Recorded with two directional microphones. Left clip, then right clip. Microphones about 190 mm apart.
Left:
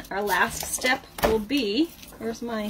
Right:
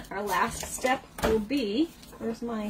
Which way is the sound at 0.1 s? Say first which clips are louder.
Left 4 dB; 30° left (ahead or behind).